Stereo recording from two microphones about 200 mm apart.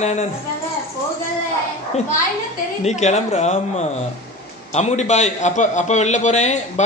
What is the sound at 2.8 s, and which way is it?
Mantra, 35° left (ahead or behind).